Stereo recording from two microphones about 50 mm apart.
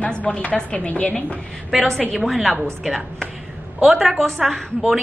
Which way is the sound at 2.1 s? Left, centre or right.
Centre.